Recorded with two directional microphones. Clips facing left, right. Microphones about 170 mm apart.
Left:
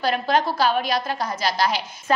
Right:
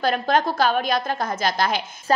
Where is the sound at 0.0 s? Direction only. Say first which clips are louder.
Right 1 dB; 50° right (ahead or behind).